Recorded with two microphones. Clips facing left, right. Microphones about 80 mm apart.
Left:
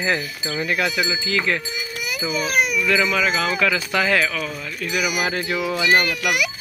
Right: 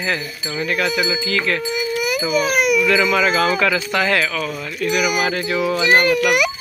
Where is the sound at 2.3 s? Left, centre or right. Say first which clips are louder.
Right 4 dB; right.